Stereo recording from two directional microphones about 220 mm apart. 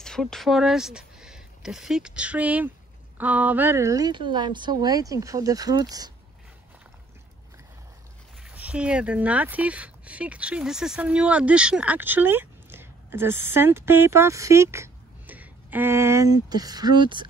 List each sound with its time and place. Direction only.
0.0 s a woman's voice: centre (ahead or behind); by 6.1 s 15° right (ahead or behind)
8.4 s speech: 5° right (ahead or behind); by 17.3 s 20° right (ahead or behind)